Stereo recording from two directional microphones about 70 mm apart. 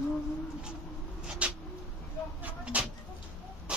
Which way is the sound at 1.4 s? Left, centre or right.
Centre.